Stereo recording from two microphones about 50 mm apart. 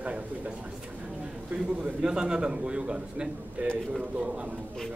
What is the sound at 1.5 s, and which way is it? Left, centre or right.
A man's voice, centre.